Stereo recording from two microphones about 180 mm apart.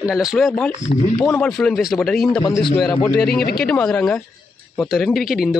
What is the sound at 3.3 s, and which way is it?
Speech, 60° left (ahead or behind).